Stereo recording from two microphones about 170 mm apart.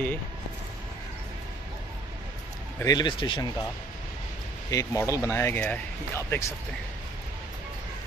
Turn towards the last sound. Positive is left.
turn(degrees=15)  # may be behind; listen again after turning